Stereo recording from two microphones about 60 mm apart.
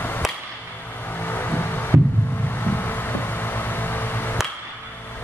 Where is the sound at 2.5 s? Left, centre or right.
Left.